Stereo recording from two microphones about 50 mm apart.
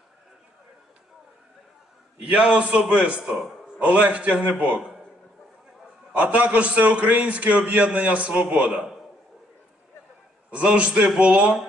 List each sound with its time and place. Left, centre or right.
2.2 s a man's voice: right
6.1 s a man's voice: right
10.5 s a man's voice: right